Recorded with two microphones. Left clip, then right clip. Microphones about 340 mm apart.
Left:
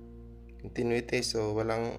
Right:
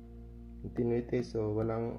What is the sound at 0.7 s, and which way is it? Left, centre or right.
Speech, left.